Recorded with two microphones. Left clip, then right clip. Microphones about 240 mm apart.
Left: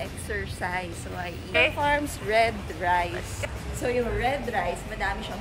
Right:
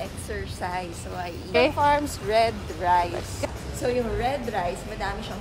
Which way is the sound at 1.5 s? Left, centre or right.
Right.